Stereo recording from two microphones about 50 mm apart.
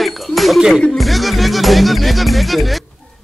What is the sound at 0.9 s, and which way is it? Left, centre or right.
Speech, centre.